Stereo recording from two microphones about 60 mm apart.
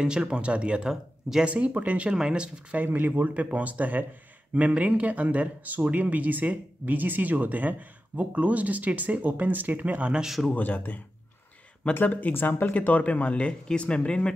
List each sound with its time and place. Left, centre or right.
0.0 s speech: centre
1.4 s speech: right
2.8 s speech: right
10.2 s speech: centre
10.5 s speech: left